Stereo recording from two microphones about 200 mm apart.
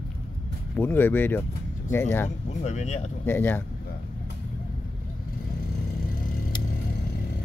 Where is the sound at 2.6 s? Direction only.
35° left (ahead or behind).